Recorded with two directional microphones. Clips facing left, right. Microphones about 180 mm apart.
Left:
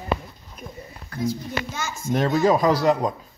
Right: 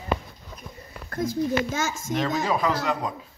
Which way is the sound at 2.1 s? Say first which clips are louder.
Left 8 dB; 50° left (ahead or behind).